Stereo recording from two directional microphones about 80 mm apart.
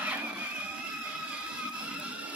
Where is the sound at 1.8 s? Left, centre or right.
Centre.